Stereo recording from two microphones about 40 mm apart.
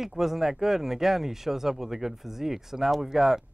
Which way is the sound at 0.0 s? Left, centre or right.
Centre.